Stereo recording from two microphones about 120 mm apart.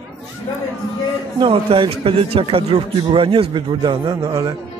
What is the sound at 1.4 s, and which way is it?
Speech, 45° right (ahead or behind).